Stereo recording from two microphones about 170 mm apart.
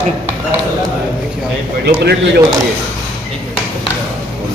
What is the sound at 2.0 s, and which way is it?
Speech, 75° right (ahead or behind).